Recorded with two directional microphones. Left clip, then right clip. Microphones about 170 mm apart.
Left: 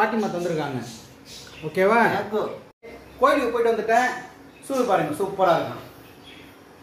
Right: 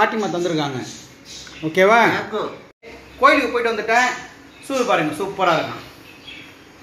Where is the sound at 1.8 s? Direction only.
30° right (ahead or behind).